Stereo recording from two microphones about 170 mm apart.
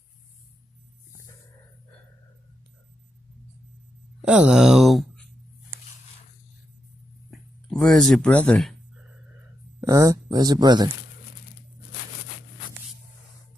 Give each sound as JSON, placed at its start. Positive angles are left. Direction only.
{"t": 4.2, "sound": "speech", "side_deg": -5}
{"t": 7.2, "sound": "a sound", "side_deg": 0}
{"t": 9.8, "sound": "speech", "side_deg": -20}